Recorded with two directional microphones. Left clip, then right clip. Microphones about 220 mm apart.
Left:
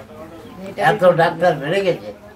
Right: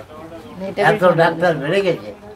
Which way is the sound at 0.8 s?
5° right (ahead or behind).